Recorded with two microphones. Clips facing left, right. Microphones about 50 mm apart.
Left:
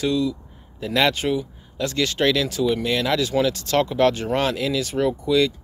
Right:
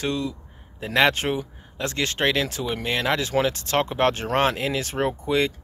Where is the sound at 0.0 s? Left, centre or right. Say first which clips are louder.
Left 5 dB; right.